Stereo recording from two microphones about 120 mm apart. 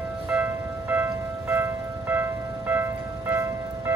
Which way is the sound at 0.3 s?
15° right (ahead or behind).